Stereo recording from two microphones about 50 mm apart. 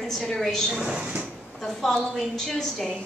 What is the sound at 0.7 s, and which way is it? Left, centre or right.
Speech, centre.